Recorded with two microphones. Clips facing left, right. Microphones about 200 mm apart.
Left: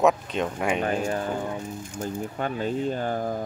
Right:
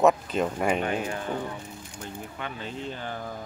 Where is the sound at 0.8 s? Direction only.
40° left (ahead or behind).